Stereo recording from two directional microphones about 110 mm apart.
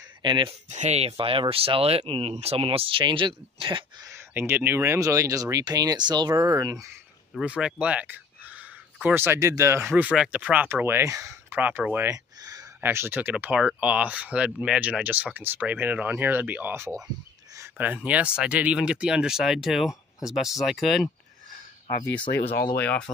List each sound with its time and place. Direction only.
0.2 s speech: 45° right (ahead or behind)
0.7 s speech: 90° right; by 3.8 s 50° right (ahead or behind)
4.3 s speech: 20° right (ahead or behind)
7.4 s speech: 10° right (ahead or behind)
10.1 s speech: 5° right (ahead or behind); by 11.3 s 25° right (ahead or behind)
11.5 s speech: 15° right (ahead or behind)
12.1 s a sound: 35° right (ahead or behind)
12.8 s speech: 20° right (ahead or behind); by 21.1 s centre (ahead or behind)
22.5 s speech: 15° left (ahead or behind)